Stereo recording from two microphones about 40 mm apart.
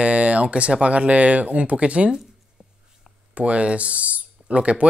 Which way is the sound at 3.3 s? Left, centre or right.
Right.